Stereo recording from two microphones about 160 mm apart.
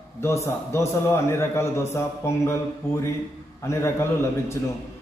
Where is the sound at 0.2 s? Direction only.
15° left (ahead or behind).